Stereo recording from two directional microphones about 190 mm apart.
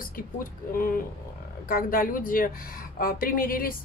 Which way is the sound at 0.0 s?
45° left (ahead or behind).